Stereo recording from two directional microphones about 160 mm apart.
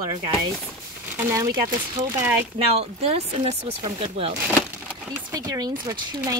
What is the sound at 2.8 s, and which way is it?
Speech, 40° right (ahead or behind).